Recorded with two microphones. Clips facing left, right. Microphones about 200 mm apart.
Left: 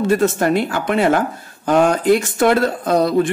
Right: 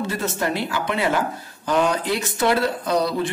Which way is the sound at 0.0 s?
50° left (ahead or behind).